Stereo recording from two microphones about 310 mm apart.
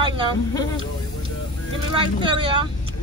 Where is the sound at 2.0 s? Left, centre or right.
Centre.